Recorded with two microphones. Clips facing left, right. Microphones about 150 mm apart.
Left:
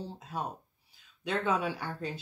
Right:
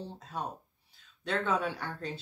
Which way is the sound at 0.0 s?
10° left (ahead or behind).